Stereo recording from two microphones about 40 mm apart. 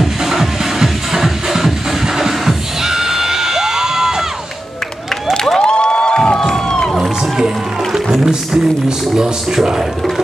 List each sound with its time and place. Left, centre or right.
0.0 s music: centre
5.6 s crowd: left
7.3 s music: centre
8.8 s a sound: centre